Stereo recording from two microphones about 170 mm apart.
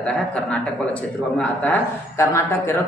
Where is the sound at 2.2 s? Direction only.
15° left (ahead or behind).